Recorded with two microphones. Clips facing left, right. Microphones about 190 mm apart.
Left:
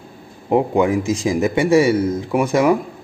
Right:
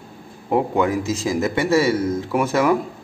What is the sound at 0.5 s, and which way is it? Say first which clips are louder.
A man's voice: left 3 dB; 20° left (ahead or behind).